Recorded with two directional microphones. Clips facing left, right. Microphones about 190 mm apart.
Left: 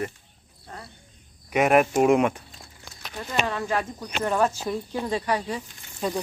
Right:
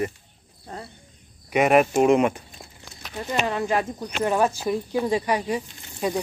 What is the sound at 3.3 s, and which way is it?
Speech, 15° right (ahead or behind).